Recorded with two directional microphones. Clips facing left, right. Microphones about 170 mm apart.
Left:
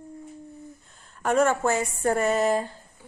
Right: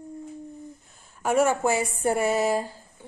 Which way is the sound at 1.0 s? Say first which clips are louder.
Even; 5° right (ahead or behind).